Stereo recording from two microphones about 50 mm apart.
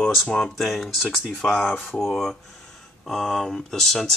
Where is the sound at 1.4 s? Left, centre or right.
Left.